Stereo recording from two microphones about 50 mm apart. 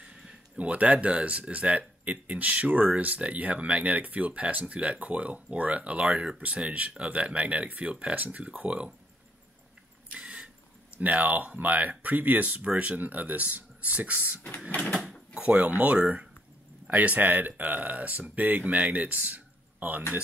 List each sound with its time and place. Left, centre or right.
0.0 s a sound: centre
0.6 s speech: right
10.1 s vehicle: centre
11.0 s speech: right
15.4 s speech: right